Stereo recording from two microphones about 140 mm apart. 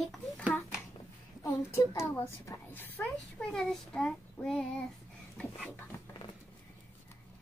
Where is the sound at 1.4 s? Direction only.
20° left (ahead or behind); by 4.7 s 5° left (ahead or behind).